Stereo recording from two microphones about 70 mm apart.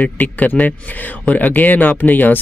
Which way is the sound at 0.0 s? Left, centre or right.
Left.